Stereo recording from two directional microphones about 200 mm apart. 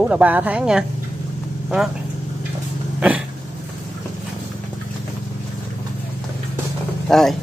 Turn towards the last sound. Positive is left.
turn(degrees=0)  # may be behind; listen again after turning